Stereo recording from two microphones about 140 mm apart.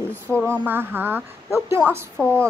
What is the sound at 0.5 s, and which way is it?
A woman's voice, 15° right (ahead or behind).